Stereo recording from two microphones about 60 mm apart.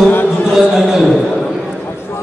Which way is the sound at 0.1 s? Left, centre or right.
Left.